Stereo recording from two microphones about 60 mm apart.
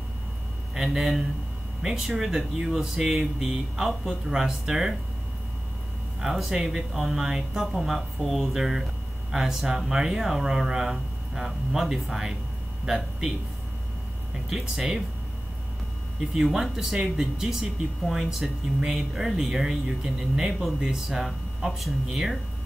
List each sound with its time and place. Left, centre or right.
0.7 s speech: centre
6.2 s speech: centre
14.5 s speech: centre
16.3 s speech: centre